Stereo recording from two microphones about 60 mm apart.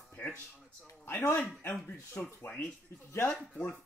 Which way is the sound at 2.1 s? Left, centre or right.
Left.